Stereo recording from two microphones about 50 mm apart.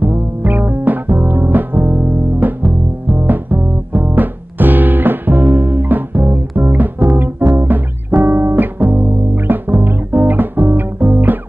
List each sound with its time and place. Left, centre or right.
0.0 s music: right